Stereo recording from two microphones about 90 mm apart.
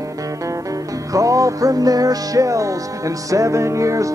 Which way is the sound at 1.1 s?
40° right (ahead or behind).